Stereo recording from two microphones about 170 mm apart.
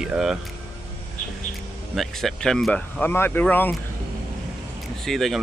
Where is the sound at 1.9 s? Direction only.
Centre (ahead or behind).